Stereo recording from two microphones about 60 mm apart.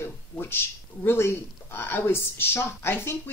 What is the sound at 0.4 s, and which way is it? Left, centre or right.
Speech, left.